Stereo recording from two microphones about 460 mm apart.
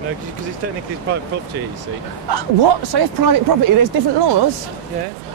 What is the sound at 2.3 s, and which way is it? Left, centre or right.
Speech, right.